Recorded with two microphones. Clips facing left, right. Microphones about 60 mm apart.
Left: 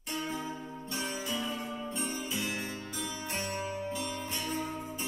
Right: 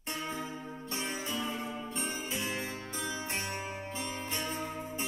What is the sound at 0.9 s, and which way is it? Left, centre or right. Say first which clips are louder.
Music: left 1 dB; right.